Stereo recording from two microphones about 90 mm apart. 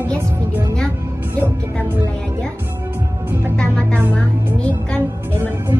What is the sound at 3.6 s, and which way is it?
Music, 10° left (ahead or behind).